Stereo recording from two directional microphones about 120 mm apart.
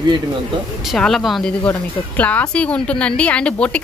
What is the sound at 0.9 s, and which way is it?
A woman's voice, 5° left (ahead or behind).